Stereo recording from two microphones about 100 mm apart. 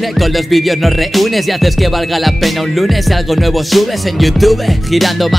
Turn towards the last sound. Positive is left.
turn(degrees=0)  # may be behind; listen again after turning